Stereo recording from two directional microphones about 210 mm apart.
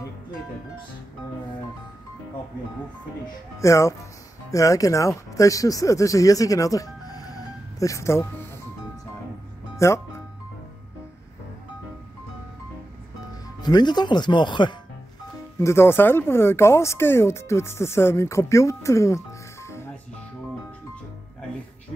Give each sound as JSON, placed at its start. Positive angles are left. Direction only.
{"t": 3.5, "sound": "speech", "side_deg": 15}
{"t": 9.8, "sound": "speech", "side_deg": 15}
{"t": 13.6, "sound": "speech", "side_deg": 20}
{"t": 15.6, "sound": "speech", "side_deg": 10}